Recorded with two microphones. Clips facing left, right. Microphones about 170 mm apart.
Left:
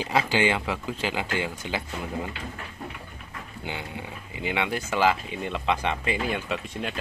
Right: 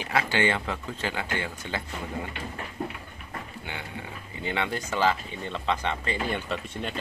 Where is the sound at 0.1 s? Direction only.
20° left (ahead or behind).